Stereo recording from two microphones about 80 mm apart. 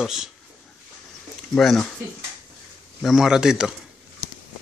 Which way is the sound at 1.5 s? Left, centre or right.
Centre.